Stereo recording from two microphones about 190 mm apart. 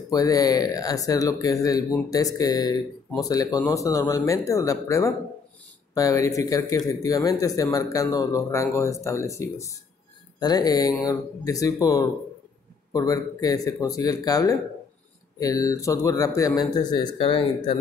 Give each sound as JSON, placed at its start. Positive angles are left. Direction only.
{"t": 0.1, "sound": "a man's voice", "side_deg": 20}